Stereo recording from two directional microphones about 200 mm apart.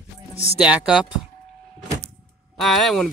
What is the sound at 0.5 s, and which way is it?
Speech, 5° right (ahead or behind).